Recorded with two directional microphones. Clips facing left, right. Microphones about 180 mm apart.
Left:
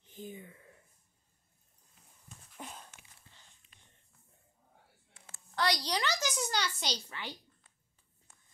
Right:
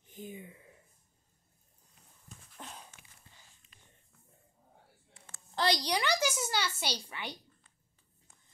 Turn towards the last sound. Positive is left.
turn(degrees=-15)  # may be behind; listen again after turning